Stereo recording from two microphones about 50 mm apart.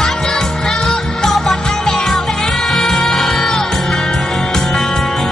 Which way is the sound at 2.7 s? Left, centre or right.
Centre.